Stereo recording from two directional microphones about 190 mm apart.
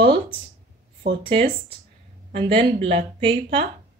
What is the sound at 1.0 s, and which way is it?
Speech, 65° right (ahead or behind).